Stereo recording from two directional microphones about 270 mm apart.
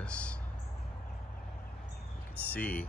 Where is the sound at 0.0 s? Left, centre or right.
Centre.